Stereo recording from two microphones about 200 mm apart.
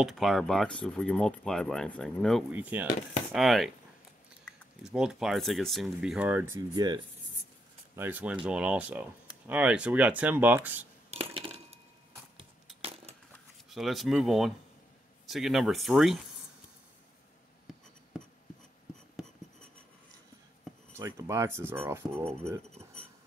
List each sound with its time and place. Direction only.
0.0 s speech: centre (ahead or behind)
2.5 s speech: 10° right (ahead or behind)
6.7 s speech: 20° right (ahead or behind)
7.9 s speech: 10° right (ahead or behind)
11.1 s coin: 30° right (ahead or behind)
13.7 s speech: centre (ahead or behind)
20.9 s speech: 15° right (ahead or behind)